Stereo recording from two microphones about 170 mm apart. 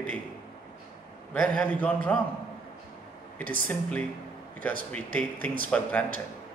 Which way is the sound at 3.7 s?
10° left (ahead or behind).